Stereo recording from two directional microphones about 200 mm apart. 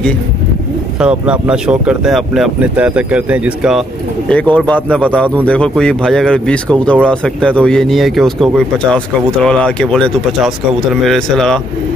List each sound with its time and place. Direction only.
1.0 s speech: 5° right (ahead or behind)
4.3 s speech: 5° left (ahead or behind)